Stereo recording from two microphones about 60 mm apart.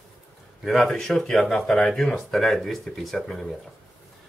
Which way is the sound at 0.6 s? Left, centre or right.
Centre.